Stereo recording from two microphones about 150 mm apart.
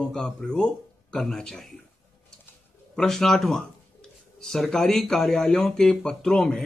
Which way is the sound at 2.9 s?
5° left (ahead or behind).